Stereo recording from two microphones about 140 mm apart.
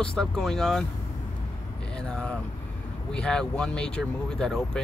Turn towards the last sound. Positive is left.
turn(degrees=5)  # may be behind; listen again after turning